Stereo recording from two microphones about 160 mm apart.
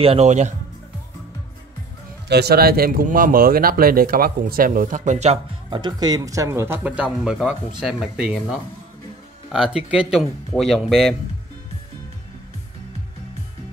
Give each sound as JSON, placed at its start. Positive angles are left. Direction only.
{"t": 0.0, "sound": "speech", "side_deg": -40}
{"t": 2.2, "sound": "speech", "side_deg": -90}
{"t": 5.7, "sound": "a man's voice", "side_deg": -30}